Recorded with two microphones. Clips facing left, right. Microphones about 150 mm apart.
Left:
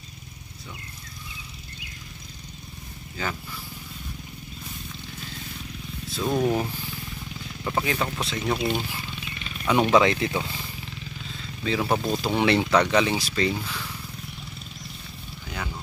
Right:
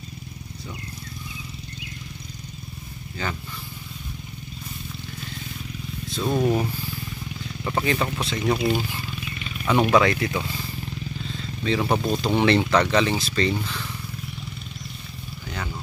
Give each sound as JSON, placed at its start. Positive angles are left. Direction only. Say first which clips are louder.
{"t": 0.7, "sound": "wild animals", "louder": "right 6 dB", "side_deg": 0}
{"t": 3.2, "sound": "speech", "louder": "right 1 dB", "side_deg": 5}
{"t": 6.0, "sound": "speech", "louder": "right 1 dB", "side_deg": 0}
{"t": 9.9, "sound": "speech", "louder": "even", "side_deg": 20}
{"t": 11.6, "sound": "speech", "louder": "right 2 dB", "side_deg": 0}